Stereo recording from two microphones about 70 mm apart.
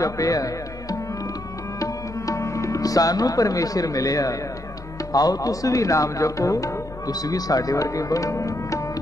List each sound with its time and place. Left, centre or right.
0.0 s speech: left
1.8 s music: left
5.1 s speech: left